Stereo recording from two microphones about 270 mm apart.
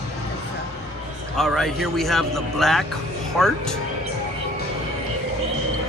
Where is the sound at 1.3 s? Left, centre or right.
Centre.